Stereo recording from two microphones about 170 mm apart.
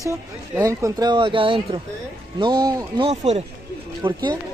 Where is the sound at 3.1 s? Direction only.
40° right (ahead or behind).